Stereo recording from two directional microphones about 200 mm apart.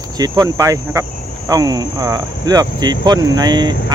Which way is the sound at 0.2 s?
15° right (ahead or behind).